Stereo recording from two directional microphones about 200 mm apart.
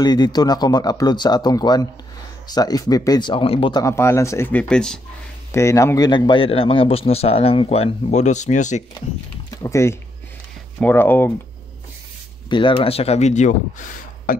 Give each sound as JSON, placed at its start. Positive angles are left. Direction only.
{"t": 0.0, "sound": "a man's voice", "side_deg": 20}
{"t": 5.5, "sound": "a man's voice", "side_deg": 15}
{"t": 9.6, "sound": "speech", "side_deg": 15}
{"t": 12.4, "sound": "speech", "side_deg": 25}